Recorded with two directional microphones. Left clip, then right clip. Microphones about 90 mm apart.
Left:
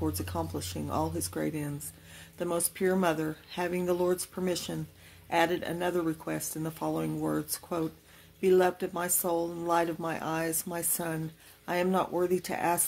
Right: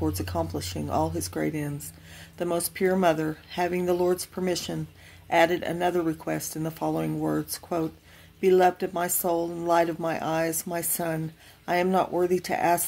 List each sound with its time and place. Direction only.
0.0 s speech: 20° right (ahead or behind)